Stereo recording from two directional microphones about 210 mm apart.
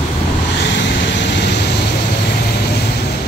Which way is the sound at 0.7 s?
55° left (ahead or behind).